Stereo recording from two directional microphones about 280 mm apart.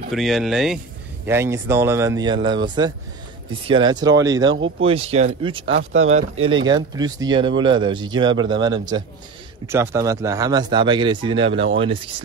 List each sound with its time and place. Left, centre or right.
0.1 s speech: centre
5.7 s speech: right
6.6 s speech: centre